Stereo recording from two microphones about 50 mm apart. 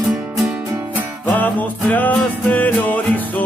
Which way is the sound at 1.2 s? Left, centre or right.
Left.